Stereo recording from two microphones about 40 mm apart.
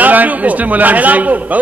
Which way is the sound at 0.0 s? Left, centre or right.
Right.